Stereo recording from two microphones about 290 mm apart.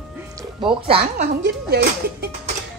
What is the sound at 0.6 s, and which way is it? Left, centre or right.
Speech, centre.